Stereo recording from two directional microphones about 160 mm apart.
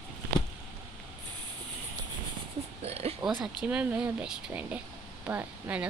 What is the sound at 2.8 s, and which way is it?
Oink, 40° right (ahead or behind).